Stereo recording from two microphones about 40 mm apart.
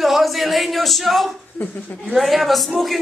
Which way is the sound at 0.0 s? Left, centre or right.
Centre.